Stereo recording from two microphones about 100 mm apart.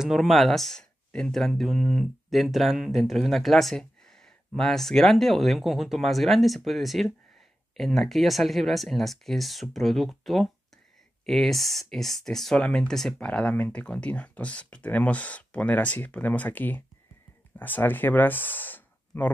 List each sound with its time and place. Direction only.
0.0 s speech: centre (ahead or behind); by 19.3 s 20° left (ahead or behind)